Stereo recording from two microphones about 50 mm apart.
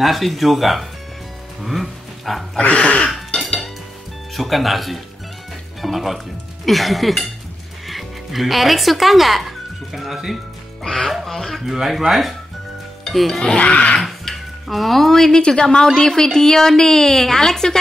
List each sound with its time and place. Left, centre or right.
0.0 s speech: centre
2.6 s throat clearing: left
4.4 s speech: centre
10.8 s speech: centre
11.6 s speech: centre
13.6 s throat clearing: left
13.9 s a woman's voice: centre